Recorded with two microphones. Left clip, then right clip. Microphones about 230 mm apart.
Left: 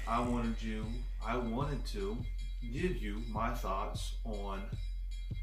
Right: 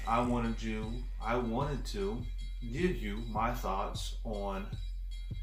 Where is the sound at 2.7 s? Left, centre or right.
Centre.